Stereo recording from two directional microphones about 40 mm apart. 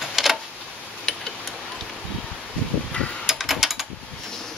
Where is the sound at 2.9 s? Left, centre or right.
Left.